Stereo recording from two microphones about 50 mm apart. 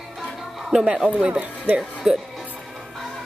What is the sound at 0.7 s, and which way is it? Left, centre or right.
Speech, centre.